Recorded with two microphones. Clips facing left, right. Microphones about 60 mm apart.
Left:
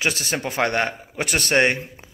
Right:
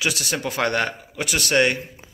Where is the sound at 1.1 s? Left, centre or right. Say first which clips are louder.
Left 1 dB; left.